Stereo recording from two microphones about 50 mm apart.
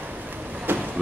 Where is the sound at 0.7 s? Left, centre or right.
Right.